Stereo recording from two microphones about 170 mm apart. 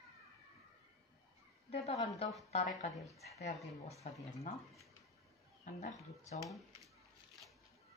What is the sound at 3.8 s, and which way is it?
Speech, 40° left (ahead or behind).